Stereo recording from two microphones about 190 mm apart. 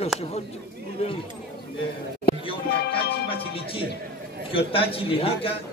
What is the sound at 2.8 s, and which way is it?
Music, 55° left (ahead or behind).